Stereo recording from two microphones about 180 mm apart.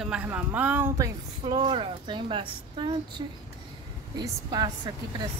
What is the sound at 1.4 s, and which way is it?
A woman's voice, 30° right (ahead or behind).